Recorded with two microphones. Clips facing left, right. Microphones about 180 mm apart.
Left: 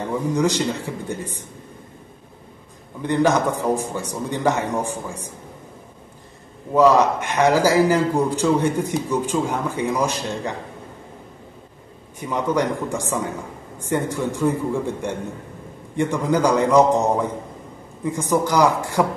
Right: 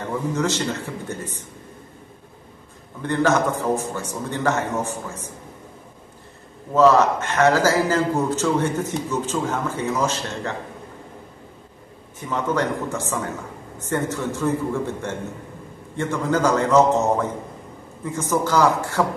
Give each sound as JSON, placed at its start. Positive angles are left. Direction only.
{"t": 0.3, "sound": "a man's voice", "side_deg": 15}
{"t": 3.0, "sound": "a man's voice", "side_deg": 15}
{"t": 6.7, "sound": "a man's voice", "side_deg": 15}
{"t": 12.2, "sound": "a man's voice", "side_deg": 15}